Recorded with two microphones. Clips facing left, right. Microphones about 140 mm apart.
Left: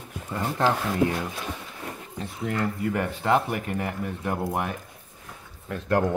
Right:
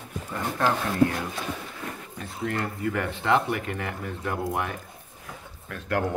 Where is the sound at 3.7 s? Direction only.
20° left (ahead or behind).